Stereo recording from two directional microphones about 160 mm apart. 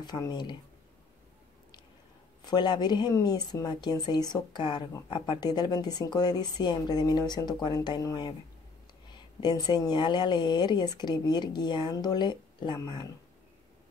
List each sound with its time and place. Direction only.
0.0 s speech: 25° left (ahead or behind)
2.4 s speech: 25° left (ahead or behind)